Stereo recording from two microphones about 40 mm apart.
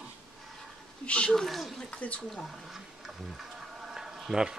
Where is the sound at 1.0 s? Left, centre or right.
Left.